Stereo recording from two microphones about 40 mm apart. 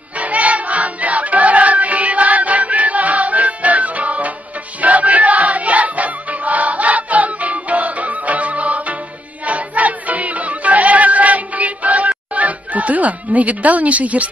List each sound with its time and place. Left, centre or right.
0.2 s music: right